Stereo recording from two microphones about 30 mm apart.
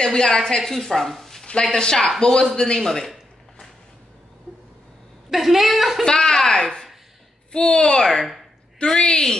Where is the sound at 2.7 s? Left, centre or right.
Centre.